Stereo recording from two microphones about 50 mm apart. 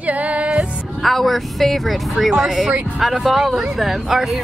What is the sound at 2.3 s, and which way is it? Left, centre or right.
Speech, centre.